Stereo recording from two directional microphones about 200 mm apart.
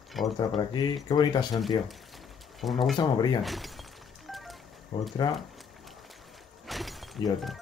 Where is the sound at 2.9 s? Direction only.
20° left (ahead or behind).